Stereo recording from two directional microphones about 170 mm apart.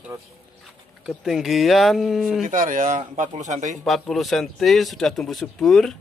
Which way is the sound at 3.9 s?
Centre (ahead or behind).